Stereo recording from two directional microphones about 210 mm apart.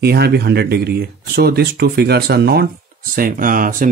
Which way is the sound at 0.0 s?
50° right (ahead or behind).